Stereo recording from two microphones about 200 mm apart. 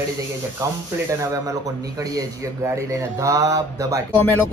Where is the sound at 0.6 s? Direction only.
15° right (ahead or behind).